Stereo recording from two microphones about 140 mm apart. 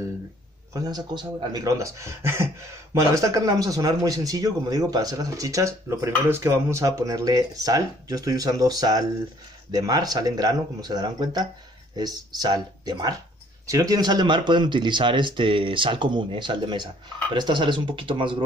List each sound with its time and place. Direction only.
0.7 s speech: 30° right (ahead or behind)